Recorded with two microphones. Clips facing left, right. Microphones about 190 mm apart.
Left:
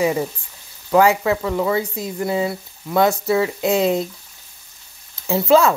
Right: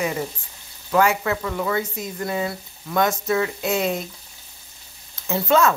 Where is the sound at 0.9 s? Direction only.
20° left (ahead or behind).